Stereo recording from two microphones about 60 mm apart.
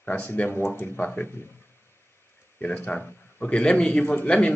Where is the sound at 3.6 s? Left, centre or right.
Centre.